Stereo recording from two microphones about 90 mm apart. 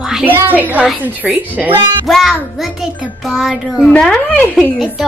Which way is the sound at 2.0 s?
Centre (ahead or behind).